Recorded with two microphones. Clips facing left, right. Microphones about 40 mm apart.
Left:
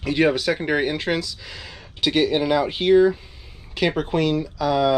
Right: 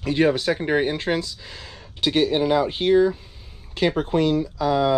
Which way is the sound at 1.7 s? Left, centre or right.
Left.